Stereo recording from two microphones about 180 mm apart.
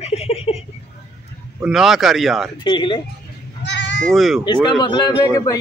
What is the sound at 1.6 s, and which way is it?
Speech, centre (ahead or behind).